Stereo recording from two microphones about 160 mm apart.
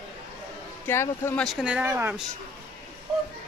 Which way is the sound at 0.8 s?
15° left (ahead or behind).